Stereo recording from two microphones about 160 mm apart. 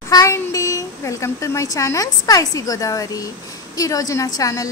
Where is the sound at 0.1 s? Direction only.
20° left (ahead or behind).